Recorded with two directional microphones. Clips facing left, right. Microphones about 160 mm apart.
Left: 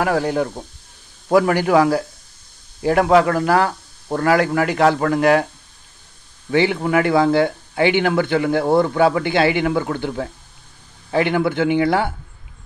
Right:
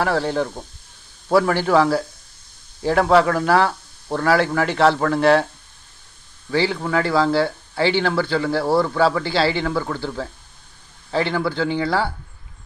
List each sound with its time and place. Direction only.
0.0 s speech: 10° left (ahead or behind)
6.5 s speech: 20° left (ahead or behind)